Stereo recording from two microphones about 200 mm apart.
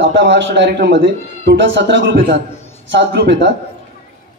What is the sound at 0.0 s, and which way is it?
A man's voice, 65° right (ahead or behind).